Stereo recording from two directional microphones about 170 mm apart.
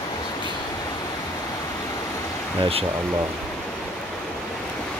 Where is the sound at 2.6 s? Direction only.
35° right (ahead or behind).